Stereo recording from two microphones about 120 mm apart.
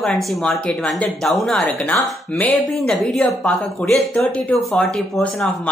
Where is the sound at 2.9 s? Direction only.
5° left (ahead or behind).